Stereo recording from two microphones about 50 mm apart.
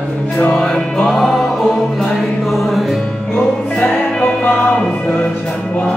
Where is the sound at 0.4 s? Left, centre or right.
Centre.